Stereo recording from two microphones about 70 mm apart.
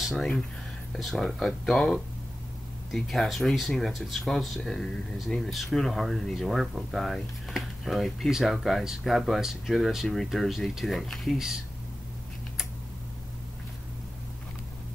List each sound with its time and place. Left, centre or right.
0.9 s speech: centre